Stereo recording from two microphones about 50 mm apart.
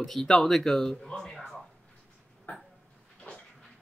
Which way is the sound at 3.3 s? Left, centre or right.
Left.